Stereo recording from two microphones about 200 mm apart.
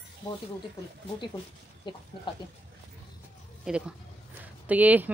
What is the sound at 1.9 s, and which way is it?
Speech, 20° left (ahead or behind).